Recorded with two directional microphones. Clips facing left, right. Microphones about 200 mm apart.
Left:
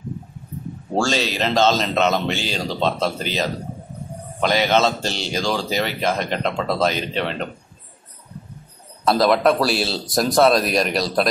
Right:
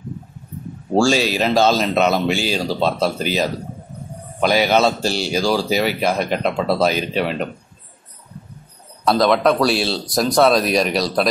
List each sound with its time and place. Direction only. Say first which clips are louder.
0.9 s speech: right 5 dB; 10° right (ahead or behind)
9.0 s speech: right 1 dB; centre (ahead or behind)